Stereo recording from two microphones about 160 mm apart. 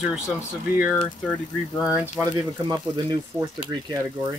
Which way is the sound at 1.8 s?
5° right (ahead or behind).